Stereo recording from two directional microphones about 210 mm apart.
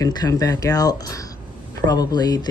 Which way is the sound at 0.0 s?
15° left (ahead or behind).